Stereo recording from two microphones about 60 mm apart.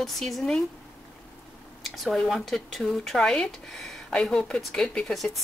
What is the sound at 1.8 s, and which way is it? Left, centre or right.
A woman's voice, centre.